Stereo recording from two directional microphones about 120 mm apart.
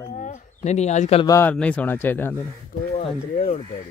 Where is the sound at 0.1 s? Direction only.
75° left (ahead or behind).